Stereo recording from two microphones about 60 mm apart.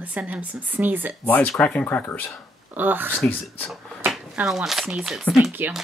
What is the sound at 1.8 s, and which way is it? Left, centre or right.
Speech, left.